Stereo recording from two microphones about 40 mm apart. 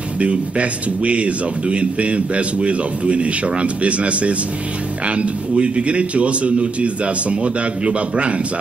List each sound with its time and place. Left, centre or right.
0.2 s speech: right